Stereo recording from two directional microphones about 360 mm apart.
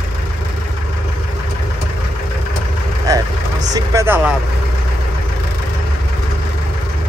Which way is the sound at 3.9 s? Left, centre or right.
Centre.